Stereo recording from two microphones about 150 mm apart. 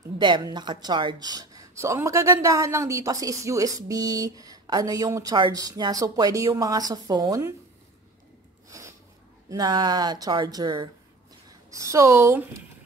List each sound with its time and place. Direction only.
0.2 s speech: 30° right (ahead or behind)
8.6 s a sound: 20° right (ahead or behind)
9.5 s speech: 30° right (ahead or behind)